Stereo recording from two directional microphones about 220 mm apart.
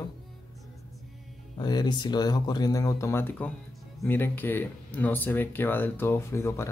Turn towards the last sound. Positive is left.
turn(degrees=10)  # may be behind; listen again after turning